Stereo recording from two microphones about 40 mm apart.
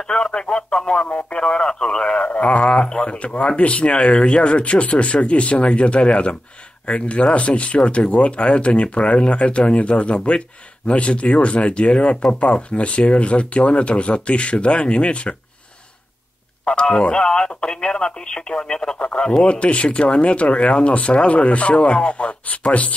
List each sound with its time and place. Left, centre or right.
0.1 s speech: left
16.7 s a sound: left
17.0 s speech: left
18.9 s speech: left